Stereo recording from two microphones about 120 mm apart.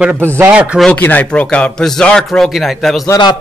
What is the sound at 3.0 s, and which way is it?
Speech, 35° left (ahead or behind).